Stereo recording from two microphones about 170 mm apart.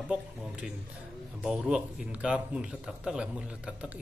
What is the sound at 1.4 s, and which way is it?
A man's voice, 5° right (ahead or behind).